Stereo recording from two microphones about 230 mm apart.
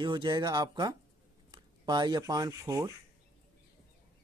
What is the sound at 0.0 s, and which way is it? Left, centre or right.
Speech, centre.